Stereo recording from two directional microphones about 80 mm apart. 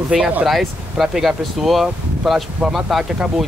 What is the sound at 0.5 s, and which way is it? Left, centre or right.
Speech, centre.